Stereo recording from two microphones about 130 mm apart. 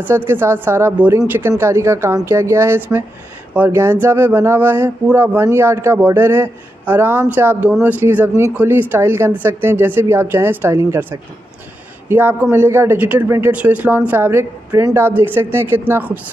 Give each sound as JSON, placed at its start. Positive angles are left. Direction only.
{"t": 0.0, "sound": "a woman's voice", "side_deg": -15}